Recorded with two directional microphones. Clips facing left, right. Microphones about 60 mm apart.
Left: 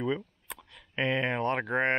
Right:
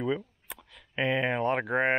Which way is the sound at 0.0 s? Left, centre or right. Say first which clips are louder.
Right 1 dB; centre.